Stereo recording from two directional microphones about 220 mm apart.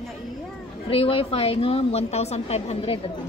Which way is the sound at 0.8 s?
25° left (ahead or behind).